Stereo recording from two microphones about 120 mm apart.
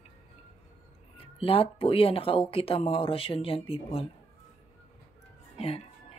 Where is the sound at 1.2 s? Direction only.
50° left (ahead or behind).